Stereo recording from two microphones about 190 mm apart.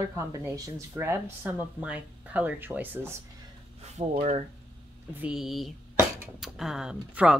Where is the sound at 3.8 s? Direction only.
35° right (ahead or behind).